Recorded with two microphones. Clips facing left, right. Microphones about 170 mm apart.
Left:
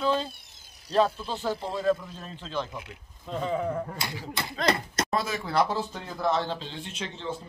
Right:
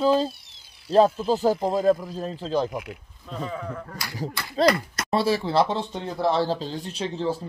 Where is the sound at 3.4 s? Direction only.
25° left (ahead or behind).